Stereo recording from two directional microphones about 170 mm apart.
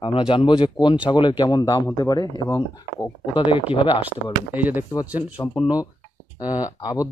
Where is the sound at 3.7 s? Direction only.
30° left (ahead or behind).